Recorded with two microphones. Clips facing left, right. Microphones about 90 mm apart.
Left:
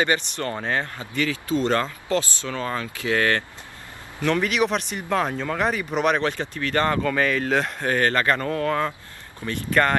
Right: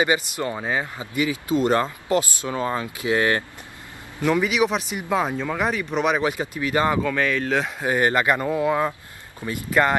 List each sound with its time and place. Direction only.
0.0 s speech: 10° right (ahead or behind)
4.2 s speech: 5° right (ahead or behind)
7.9 s speech: 15° right (ahead or behind)